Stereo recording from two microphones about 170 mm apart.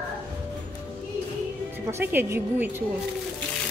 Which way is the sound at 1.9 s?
15° right (ahead or behind).